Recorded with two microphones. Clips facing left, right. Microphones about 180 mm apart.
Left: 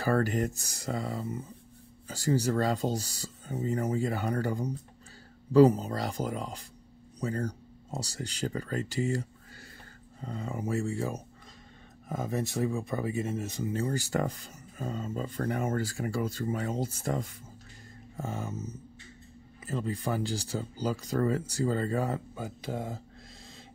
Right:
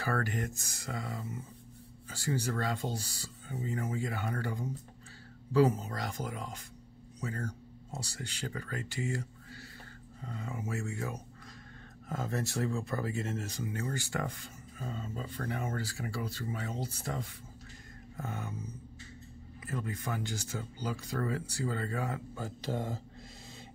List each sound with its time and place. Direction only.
0.0 s speech: 35° left (ahead or behind)
12.1 s speech: 15° left (ahead or behind); by 17.3 s 45° left (ahead or behind)
18.1 s speech: 25° left (ahead or behind)
19.6 s speech: 30° left (ahead or behind)
22.3 s speech: 15° left (ahead or behind)
22.7 s speech: 5° left (ahead or behind)